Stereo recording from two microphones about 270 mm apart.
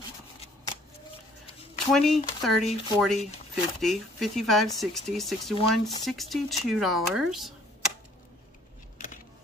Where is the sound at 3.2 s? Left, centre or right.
Left.